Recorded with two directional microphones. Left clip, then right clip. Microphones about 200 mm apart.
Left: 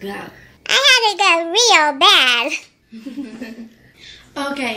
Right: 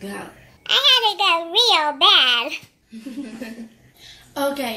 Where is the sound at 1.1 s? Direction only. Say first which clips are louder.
Left 3 dB; 25° left (ahead or behind).